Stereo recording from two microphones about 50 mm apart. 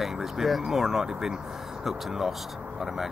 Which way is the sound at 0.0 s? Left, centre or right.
Centre.